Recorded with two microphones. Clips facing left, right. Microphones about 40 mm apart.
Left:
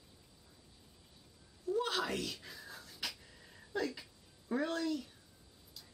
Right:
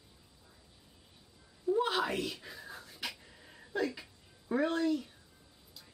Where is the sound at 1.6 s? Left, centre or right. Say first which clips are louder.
Right 5 dB; centre.